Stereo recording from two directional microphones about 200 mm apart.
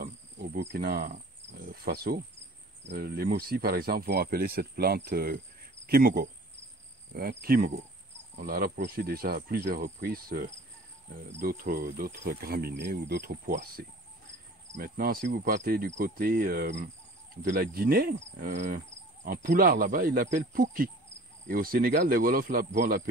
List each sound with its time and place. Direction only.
0.0 s insect: 55° right (ahead or behind)
1.7 s speech: 50° right (ahead or behind)
14.8 s speech: 45° right (ahead or behind)